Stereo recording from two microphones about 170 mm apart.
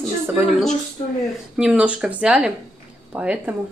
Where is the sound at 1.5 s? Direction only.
5° right (ahead or behind).